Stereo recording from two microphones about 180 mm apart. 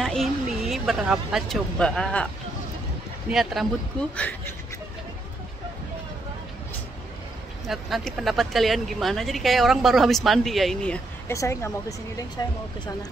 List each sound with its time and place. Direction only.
0.0 s speech: centre (ahead or behind)
3.3 s speech: centre (ahead or behind)
7.6 s speech: centre (ahead or behind)
11.3 s speech: 15° left (ahead or behind)